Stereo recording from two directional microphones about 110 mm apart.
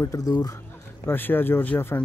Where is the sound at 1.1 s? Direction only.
20° left (ahead or behind).